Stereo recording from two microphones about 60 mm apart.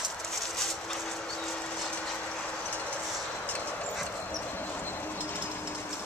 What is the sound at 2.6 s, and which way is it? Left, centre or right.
Train, left.